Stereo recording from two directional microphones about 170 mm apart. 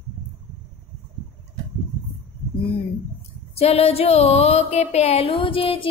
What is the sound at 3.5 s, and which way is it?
Music, 35° left (ahead or behind).